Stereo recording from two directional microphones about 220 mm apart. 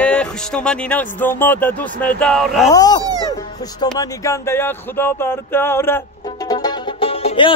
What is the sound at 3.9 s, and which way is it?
Music, 15° left (ahead or behind).